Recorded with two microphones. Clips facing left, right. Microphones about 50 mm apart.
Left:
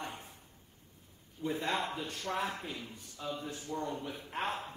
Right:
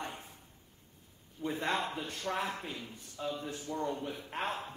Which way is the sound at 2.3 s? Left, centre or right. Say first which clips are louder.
Left 2 dB; right.